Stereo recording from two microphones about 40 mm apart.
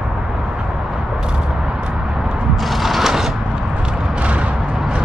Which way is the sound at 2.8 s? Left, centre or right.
Centre.